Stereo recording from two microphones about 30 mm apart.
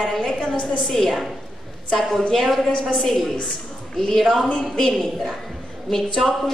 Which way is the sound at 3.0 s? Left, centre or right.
Centre.